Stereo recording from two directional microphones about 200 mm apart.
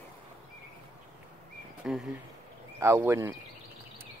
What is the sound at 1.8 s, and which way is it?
Speech, 5° right (ahead or behind).